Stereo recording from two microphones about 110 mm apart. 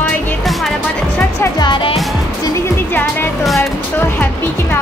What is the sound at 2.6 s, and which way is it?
Speech, 20° left (ahead or behind).